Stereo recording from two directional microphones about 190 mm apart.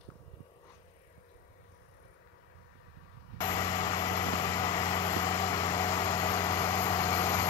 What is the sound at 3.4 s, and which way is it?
Vehicle, 15° left (ahead or behind).